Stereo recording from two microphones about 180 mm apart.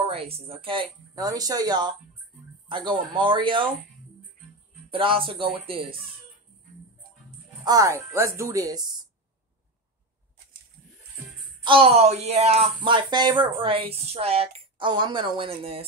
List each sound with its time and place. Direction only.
0.0 s speech: 35° right (ahead or behind)
4.9 s speech: 30° right (ahead or behind)
7.6 s speech: 20° right (ahead or behind)
11.6 s speech: 30° right (ahead or behind)